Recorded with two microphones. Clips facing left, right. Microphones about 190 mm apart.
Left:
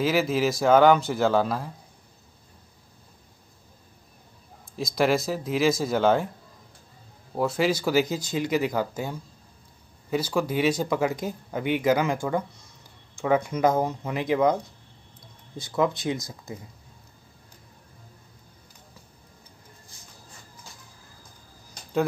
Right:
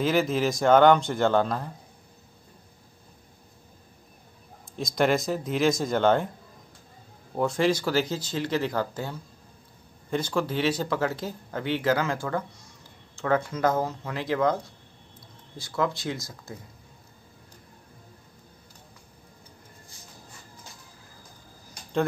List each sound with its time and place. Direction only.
0.0 s speech: 5° left (ahead or behind)
4.7 s speech: centre (ahead or behind)
7.3 s speech: 5° left (ahead or behind)